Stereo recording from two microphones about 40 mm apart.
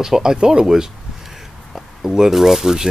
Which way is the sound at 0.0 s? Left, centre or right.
Centre.